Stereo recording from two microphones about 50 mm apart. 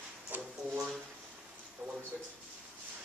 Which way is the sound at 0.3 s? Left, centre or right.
Right.